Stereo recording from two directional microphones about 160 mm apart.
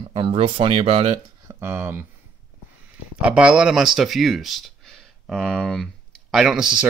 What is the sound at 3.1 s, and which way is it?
Speech, 5° right (ahead or behind).